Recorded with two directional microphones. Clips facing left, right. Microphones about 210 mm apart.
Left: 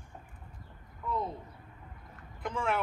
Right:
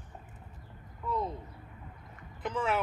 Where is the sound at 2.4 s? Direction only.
5° right (ahead or behind).